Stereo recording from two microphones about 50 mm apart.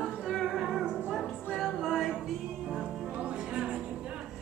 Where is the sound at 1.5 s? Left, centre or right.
Centre.